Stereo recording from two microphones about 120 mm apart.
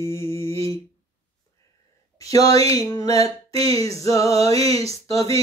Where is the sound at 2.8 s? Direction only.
30° left (ahead or behind).